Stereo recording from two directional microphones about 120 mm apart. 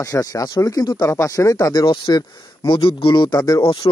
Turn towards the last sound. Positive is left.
turn(degrees=30)  # may be behind; listen again after turning